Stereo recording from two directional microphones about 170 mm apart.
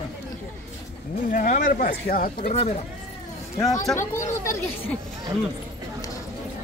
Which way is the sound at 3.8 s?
15° left (ahead or behind).